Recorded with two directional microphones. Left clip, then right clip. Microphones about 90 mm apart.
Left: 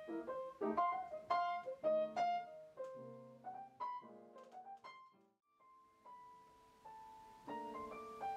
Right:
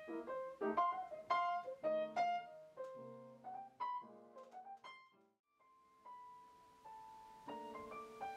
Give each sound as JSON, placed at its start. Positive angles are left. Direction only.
{"t": 0.0, "sound": "music", "side_deg": -15}
{"t": 0.7, "sound": "piano", "side_deg": -5}
{"t": 2.9, "sound": "music", "side_deg": -20}
{"t": 3.5, "sound": "piano", "side_deg": -10}
{"t": 7.4, "sound": "music", "side_deg": -10}